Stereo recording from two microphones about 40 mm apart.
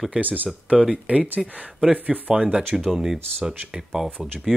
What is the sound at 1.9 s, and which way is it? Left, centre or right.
Speech, right.